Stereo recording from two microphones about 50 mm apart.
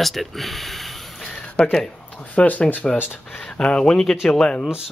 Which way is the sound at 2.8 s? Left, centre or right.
Centre.